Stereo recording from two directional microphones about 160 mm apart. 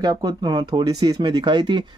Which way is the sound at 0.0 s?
25° right (ahead or behind).